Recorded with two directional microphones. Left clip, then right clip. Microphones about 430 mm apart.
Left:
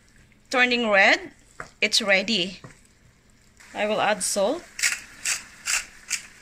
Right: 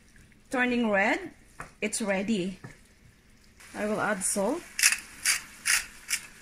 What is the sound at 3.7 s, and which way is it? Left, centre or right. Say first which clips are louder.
Speech: left 6 dB; left.